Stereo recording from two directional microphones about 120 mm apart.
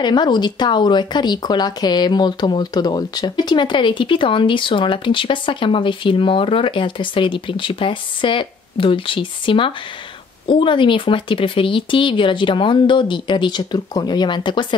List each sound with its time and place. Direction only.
0.0 s speech: 40° left (ahead or behind)